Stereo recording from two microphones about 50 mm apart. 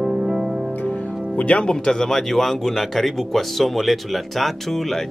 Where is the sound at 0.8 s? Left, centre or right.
Left.